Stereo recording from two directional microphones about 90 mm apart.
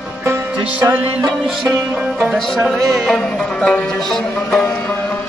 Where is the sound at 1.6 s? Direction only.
30° right (ahead or behind).